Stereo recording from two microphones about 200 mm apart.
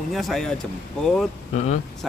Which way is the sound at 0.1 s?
Centre (ahead or behind).